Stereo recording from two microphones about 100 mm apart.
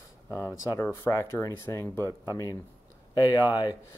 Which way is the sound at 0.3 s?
30° left (ahead or behind).